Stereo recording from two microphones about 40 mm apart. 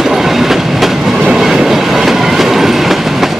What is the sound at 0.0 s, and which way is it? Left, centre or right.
Train, centre.